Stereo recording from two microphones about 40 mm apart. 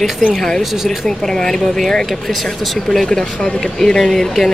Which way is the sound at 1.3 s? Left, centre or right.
Centre.